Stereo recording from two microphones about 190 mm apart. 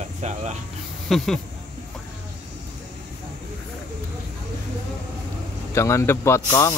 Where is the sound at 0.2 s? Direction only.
35° right (ahead or behind).